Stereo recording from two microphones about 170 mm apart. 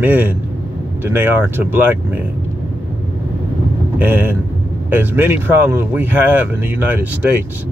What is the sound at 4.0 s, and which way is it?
Speech, 10° right (ahead or behind).